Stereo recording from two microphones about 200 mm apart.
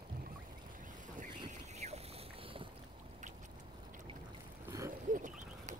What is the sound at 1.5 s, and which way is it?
Boat, 35° right (ahead or behind).